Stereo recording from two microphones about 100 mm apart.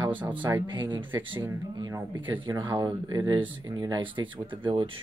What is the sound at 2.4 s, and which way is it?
Speech, 50° right (ahead or behind).